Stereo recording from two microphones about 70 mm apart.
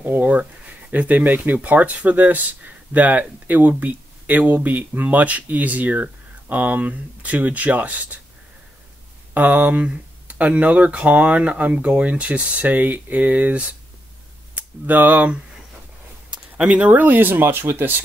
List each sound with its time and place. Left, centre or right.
0.0 s speech: right
9.3 s speech: right